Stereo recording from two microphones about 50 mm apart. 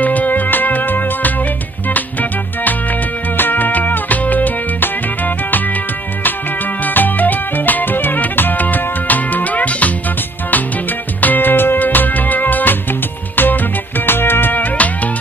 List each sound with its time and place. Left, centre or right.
0.0 s music: left
6.8 s music: left
11.1 s music: left